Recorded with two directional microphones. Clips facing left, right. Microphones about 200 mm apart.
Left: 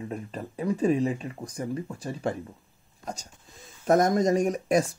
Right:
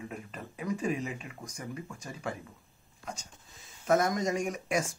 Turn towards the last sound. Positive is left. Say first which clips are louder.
# left 8 dB
turn(degrees=35)  # may be behind; listen again after turning